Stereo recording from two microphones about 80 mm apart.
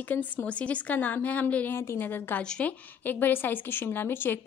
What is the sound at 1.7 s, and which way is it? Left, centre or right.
Speech, left.